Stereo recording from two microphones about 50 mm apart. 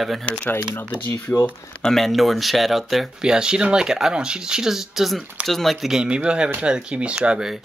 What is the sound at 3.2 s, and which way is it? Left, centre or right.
Speech, centre.